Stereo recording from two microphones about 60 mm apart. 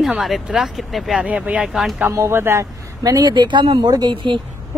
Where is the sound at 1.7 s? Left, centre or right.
Centre.